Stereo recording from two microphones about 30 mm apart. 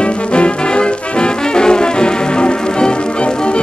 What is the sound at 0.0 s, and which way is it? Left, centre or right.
Music, left.